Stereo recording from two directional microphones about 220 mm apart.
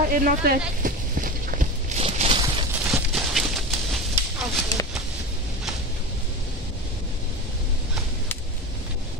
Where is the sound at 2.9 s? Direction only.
Centre (ahead or behind).